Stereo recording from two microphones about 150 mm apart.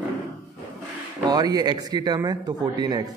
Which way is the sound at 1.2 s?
25° right (ahead or behind).